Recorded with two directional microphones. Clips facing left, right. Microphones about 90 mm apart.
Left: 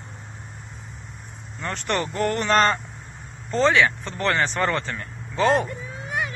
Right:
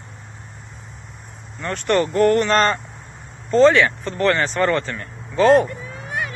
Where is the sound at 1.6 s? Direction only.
15° left (ahead or behind).